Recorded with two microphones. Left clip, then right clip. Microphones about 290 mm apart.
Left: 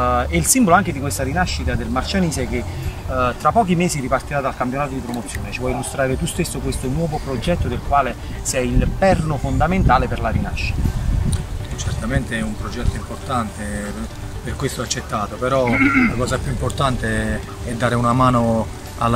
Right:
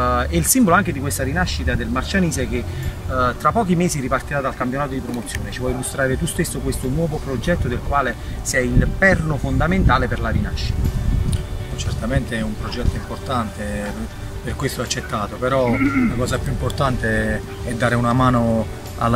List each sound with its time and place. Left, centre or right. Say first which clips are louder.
0.0 s speech: left 1 dB; centre
5.9 s speech: right 1 dB; centre
12.1 s speech: even; centre
15.8 s speech: left 4 dB; left
16.2 s speech: left 1 dB; centre